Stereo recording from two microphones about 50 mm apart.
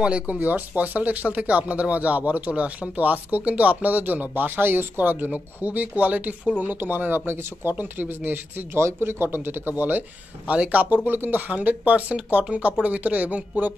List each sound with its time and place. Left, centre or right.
0.0 s speech: right
0.4 s speech: right
6.6 s speech: right
8.7 s speech: right
10.4 s speech: right